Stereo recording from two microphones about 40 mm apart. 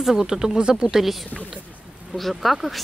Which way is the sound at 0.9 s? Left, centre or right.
Centre.